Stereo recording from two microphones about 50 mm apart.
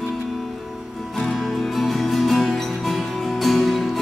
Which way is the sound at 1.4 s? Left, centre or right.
Centre.